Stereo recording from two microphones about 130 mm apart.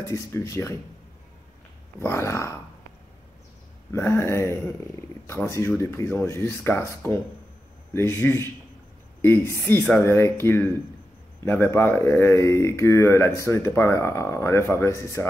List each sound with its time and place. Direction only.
0.1 s speech: 20° left (ahead or behind)
2.0 s speech: 20° left (ahead or behind)
3.9 s speech: 20° left (ahead or behind)